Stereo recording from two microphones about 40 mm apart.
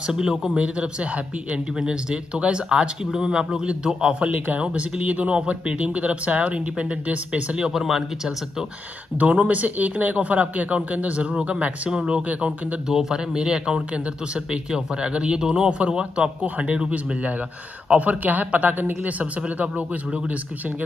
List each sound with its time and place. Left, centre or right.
0.0 s speech: centre
0.6 s speech: right
7.7 s speech: centre
9.2 s speech: right
12.8 s speech: centre
17.9 s speech: right